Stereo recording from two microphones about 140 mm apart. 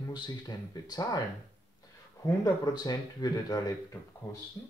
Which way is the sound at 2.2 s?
30° left (ahead or behind).